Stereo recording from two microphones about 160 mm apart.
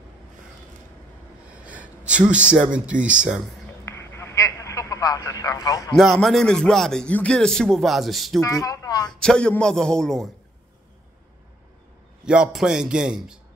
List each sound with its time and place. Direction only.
1.5 s speech: 10° right (ahead or behind)
3.8 s a sound: 15° left (ahead or behind)
5.9 s speech: centre (ahead or behind)
8.4 s speech: 20° left (ahead or behind)
9.2 s speech: 5° left (ahead or behind)
12.3 s speech: 5° right (ahead or behind)